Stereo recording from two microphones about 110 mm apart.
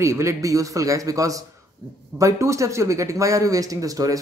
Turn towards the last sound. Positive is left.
turn(degrees=-30)  # may be behind; listen again after turning